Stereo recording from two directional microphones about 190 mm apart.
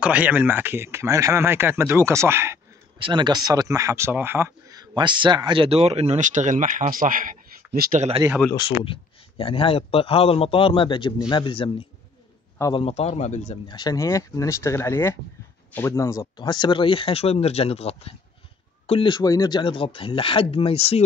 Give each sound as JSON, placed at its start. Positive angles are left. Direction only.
{"t": 0.0, "sound": "speech", "side_deg": -10}
{"t": 3.0, "sound": "speech", "side_deg": -25}
{"t": 8.5, "sound": "speech", "side_deg": 25}
{"t": 12.7, "sound": "speech", "side_deg": 30}
{"t": 13.7, "sound": "speech", "side_deg": 20}